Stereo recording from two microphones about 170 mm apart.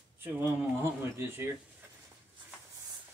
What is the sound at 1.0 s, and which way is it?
Speech, 15° right (ahead or behind).